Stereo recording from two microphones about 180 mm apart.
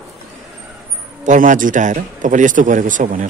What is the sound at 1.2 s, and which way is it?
A man's voice, 45° right (ahead or behind).